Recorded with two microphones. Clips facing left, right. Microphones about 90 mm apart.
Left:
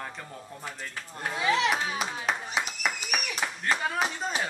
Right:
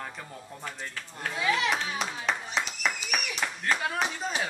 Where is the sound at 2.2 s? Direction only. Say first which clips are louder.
Even; 5° left (ahead or behind).